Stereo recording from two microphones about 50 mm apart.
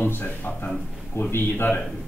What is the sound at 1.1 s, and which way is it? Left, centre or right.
Speech, left.